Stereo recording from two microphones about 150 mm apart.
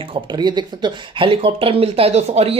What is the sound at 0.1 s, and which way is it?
Speech, 30° right (ahead or behind).